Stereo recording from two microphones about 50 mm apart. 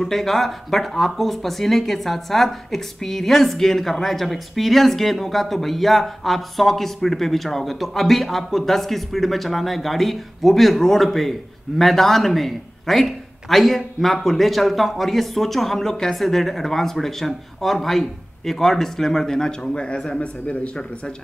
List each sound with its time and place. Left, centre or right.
0.0 s speech: centre; by 20.8 s left